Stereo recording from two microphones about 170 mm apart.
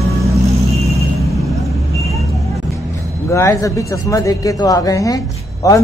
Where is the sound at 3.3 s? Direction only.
20° left (ahead or behind).